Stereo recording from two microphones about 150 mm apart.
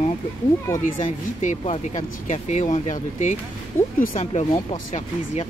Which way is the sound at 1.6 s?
40° left (ahead or behind).